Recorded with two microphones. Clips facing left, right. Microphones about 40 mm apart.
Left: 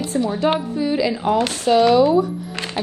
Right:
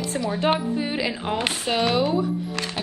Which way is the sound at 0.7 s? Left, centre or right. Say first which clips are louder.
Left 5 dB; right.